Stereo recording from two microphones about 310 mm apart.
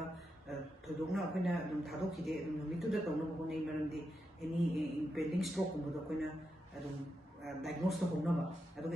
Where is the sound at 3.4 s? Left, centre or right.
Centre.